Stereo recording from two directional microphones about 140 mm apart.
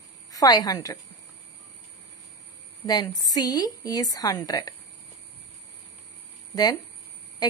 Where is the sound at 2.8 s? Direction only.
25° left (ahead or behind).